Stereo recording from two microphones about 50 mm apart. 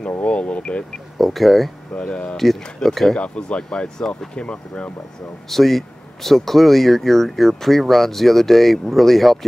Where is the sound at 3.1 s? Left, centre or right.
Left.